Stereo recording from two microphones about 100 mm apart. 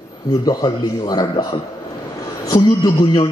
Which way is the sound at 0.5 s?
40° left (ahead or behind).